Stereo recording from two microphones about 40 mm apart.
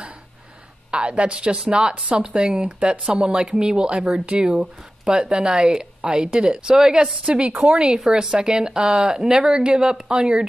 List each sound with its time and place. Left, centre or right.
0.9 s a woman's voice: right
5.0 s a woman's voice: centre
8.0 s a woman's voice: centre